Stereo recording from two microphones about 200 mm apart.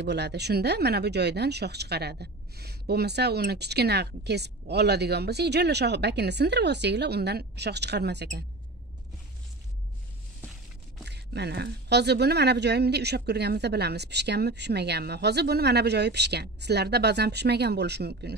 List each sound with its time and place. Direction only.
0.0 s speech: 55° right (ahead or behind)
11.1 s speech: 55° right (ahead or behind)